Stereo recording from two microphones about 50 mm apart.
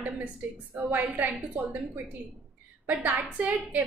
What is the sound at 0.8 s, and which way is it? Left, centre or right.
Speech, right.